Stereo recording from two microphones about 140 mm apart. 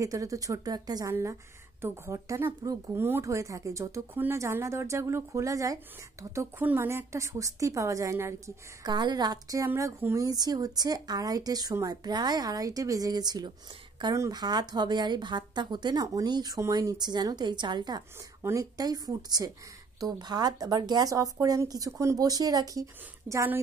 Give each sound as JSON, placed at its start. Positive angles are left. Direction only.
{"t": 0.0, "sound": "speech", "side_deg": -25}